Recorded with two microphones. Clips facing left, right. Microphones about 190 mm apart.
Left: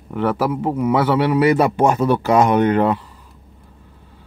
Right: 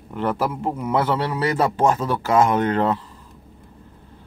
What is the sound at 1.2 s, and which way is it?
Speech, 20° left (ahead or behind).